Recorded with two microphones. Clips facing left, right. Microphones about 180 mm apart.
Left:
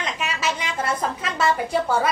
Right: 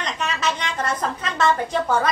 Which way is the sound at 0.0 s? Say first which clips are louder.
Right 1 dB; 5° left (ahead or behind).